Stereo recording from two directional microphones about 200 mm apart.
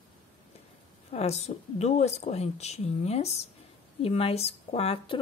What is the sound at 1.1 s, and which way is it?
Speech, 30° left (ahead or behind).